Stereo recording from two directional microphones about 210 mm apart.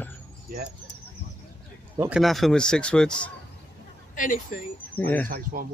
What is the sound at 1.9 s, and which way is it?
Speech, 15° right (ahead or behind).